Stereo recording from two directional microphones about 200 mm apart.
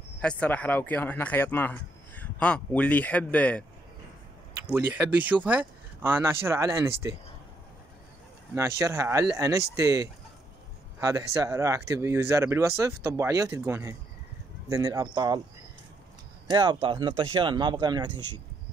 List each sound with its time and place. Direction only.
0.2 s speech: 5° left (ahead or behind)
4.6 s speech: 10° right (ahead or behind)
8.5 s speech: 15° right (ahead or behind)
16.4 s speech: 20° right (ahead or behind)